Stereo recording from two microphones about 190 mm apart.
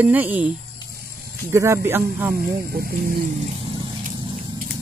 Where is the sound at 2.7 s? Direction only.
50° right (ahead or behind).